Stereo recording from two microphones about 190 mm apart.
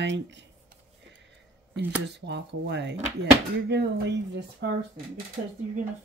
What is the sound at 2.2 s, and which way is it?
Speech, 65° right (ahead or behind).